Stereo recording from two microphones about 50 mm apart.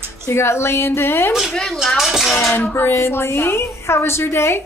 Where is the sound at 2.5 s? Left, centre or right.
Left.